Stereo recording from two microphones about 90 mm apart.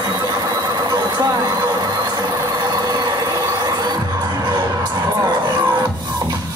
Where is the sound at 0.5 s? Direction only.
45° right (ahead or behind).